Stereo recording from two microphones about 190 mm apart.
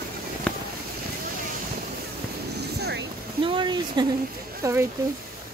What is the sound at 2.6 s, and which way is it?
Vehicle, 60° right (ahead or behind).